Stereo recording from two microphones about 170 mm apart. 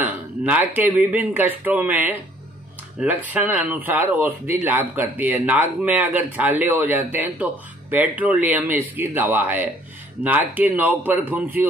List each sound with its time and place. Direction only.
0.0 s speech: 10° right (ahead or behind)